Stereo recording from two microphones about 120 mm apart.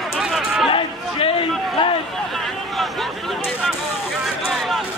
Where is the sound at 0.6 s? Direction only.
45° left (ahead or behind).